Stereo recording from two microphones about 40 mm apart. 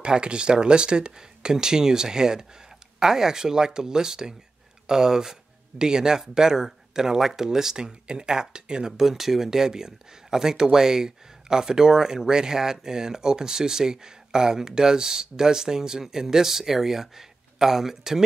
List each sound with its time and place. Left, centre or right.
0.0 s speech: right
8.9 s speech: centre